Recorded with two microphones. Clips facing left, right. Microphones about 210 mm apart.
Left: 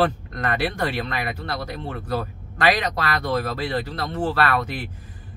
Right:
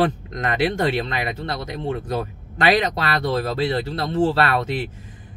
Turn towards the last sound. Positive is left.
turn(degrees=-25)  # may be behind; listen again after turning